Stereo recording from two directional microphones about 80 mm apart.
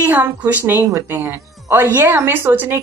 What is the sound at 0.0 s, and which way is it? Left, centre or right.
A woman's voice, right.